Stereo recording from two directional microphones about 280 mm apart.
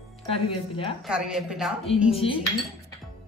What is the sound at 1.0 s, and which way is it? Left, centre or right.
Speech, centre.